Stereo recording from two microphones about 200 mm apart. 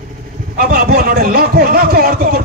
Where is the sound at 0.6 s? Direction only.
45° right (ahead or behind).